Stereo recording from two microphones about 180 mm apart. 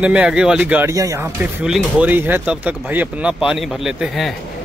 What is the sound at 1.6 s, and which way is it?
Speech, 5° right (ahead or behind).